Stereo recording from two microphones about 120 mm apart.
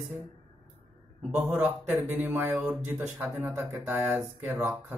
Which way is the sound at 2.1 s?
15° right (ahead or behind).